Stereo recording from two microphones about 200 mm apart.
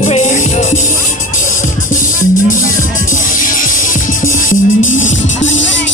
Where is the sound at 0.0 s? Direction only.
35° left (ahead or behind).